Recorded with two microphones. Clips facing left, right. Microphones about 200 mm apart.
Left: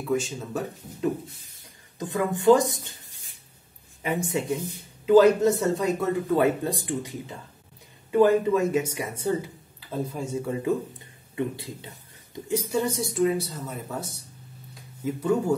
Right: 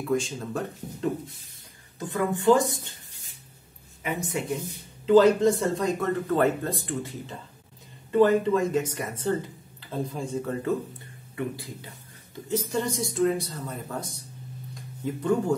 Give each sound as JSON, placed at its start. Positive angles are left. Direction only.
{"t": 0.0, "sound": "speech", "side_deg": 5}
{"t": 2.0, "sound": "speech", "side_deg": 20}
{"t": 4.0, "sound": "speech", "side_deg": 30}
{"t": 5.0, "sound": "speech", "side_deg": 10}
{"t": 12.4, "sound": "speech", "side_deg": 10}
{"t": 14.7, "sound": "a sound", "side_deg": 5}